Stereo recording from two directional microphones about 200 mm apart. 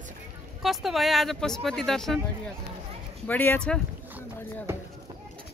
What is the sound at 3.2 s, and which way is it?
Speech, 10° left (ahead or behind).